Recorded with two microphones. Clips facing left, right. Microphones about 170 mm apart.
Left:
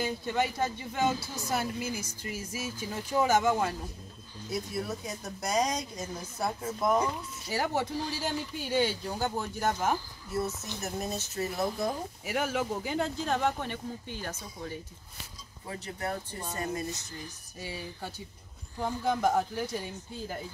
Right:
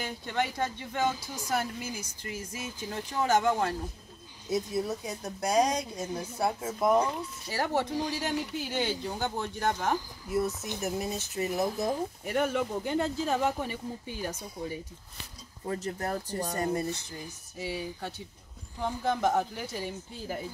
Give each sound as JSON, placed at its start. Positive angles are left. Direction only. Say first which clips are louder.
{"t": 0.0, "sound": "speech", "louder": "left 2 dB", "side_deg": 5}
{"t": 1.9, "sound": "speech", "louder": "left 3 dB", "side_deg": -15}
{"t": 2.3, "sound": "speech", "louder": "left 1 dB", "side_deg": 5}
{"t": 4.5, "sound": "speech", "louder": "right 4 dB", "side_deg": -20}
{"t": 7.5, "sound": "speech", "louder": "right 1 dB", "side_deg": 10}
{"t": 8.5, "sound": "speech", "louder": "left 2 dB", "side_deg": 0}
{"t": 9.9, "sound": "speech", "louder": "right 3 dB", "side_deg": -15}
{"t": 11.7, "sound": "speech", "louder": "right 2 dB", "side_deg": 0}
{"t": 15.7, "sound": "speech", "louder": "right 3 dB", "side_deg": -40}
{"t": 17.6, "sound": "speech", "louder": "right 4 dB", "side_deg": 0}